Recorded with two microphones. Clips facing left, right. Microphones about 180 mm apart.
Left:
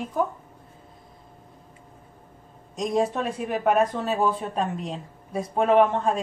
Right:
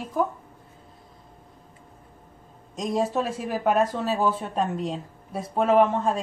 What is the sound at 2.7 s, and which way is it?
Speech, centre (ahead or behind).